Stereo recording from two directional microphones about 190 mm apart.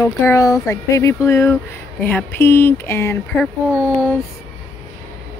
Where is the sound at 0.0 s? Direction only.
15° left (ahead or behind).